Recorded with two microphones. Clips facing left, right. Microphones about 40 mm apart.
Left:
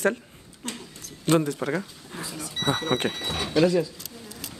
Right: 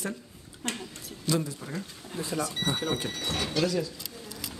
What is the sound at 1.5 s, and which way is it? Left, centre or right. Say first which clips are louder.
Speech: left 10 dB; left.